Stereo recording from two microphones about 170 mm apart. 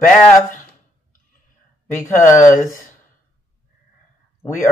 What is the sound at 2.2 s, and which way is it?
Speech, 15° left (ahead or behind).